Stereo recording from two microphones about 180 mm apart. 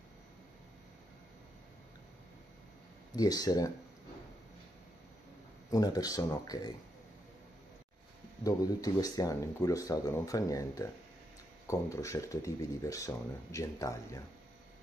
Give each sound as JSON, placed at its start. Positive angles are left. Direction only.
{"t": 3.1, "sound": "speech", "side_deg": 20}
{"t": 5.7, "sound": "speech", "side_deg": 20}
{"t": 8.5, "sound": "speech", "side_deg": 20}